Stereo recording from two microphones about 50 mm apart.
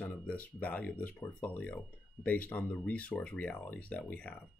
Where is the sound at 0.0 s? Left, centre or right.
Left.